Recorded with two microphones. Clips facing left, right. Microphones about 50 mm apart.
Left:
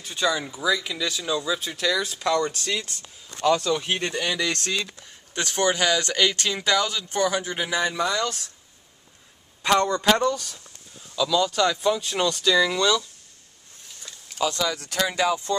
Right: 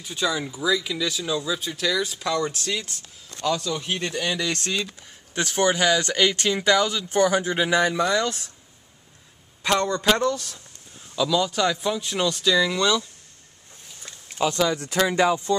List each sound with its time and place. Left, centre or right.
0.0 s speech: centre
3.3 s a man's voice: left
4.0 s speech: centre
4.6 s speech: centre
7.4 s speech: right
9.6 s a man's voice: centre
11.1 s speech: centre
14.0 s a sound: right
15.1 s speech: right